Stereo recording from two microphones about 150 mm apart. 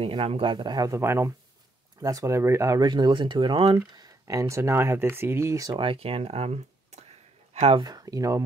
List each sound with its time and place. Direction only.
0.0 s speech: 40° right (ahead or behind); by 5.7 s 20° right (ahead or behind)
5.7 s speech: 40° right (ahead or behind)
7.8 s speech: 25° right (ahead or behind)